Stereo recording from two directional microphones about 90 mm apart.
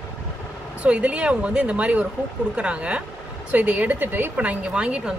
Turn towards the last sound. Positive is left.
turn(degrees=-10)  # may be behind; listen again after turning